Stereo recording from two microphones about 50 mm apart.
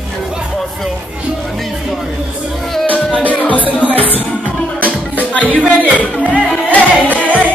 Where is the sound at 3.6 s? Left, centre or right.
Right.